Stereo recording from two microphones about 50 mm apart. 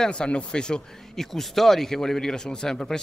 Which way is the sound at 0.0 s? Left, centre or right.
Centre.